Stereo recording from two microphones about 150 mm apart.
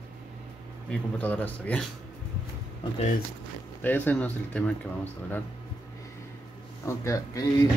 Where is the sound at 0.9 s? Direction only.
10° left (ahead or behind).